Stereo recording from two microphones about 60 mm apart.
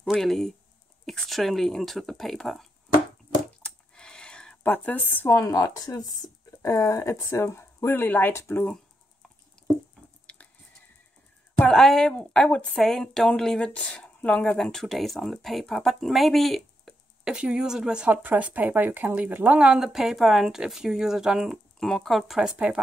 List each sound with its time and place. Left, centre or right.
0.1 s speech: centre
3.6 s a sound: centre
4.6 s a woman's voice: left
5.3 s speech: left
6.7 s speech: left
8.3 s speech: left
10.2 s a sound: left
11.7 s a woman's voice: centre
12.8 s speech: centre
14.6 s speech: centre
17.2 s speech: centre
18.1 s speech: right
19.7 s speech: centre
21.7 s speech: centre